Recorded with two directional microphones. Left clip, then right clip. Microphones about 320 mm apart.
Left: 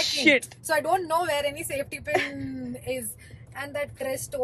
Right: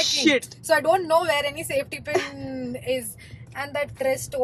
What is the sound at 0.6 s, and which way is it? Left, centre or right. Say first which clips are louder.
A woman's voice: right 4 dB; centre.